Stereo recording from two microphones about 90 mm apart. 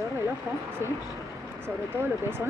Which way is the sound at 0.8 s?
30° right (ahead or behind).